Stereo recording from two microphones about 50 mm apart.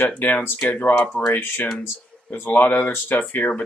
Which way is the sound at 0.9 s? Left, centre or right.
Left.